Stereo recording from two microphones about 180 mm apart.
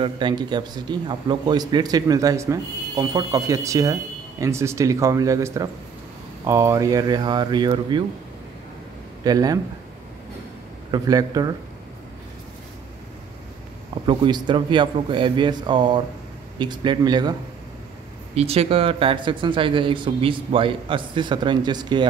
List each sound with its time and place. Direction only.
0.0 s a man's voice: 25° right (ahead or behind)
9.2 s a man's voice: 20° right (ahead or behind)
10.9 s a man's voice: 20° right (ahead or behind)
14.0 s a man's voice: 25° right (ahead or behind)
18.3 s a man's voice: 35° right (ahead or behind)